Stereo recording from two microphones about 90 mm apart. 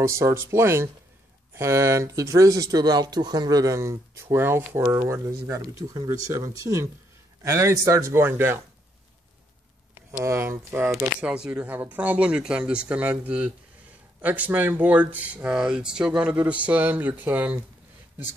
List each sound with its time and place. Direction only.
0.0 s speech: 30° right (ahead or behind)
10.2 s speech: 30° right (ahead or behind)
11.1 s speech: 10° right (ahead or behind)
11.6 s speech: 20° right (ahead or behind)